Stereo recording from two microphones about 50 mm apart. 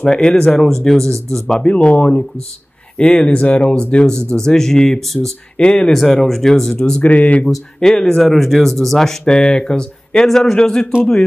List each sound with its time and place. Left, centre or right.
0.0 s speech: centre
1.6 s speech: left; by 5.3 s centre
5.6 s speech: centre
7.0 s speech: left
7.5 s speech: centre